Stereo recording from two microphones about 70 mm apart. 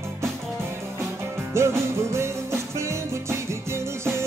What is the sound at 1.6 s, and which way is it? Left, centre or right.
Music, right.